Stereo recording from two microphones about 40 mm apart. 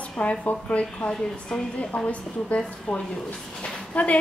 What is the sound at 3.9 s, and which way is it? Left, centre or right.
Speech, left.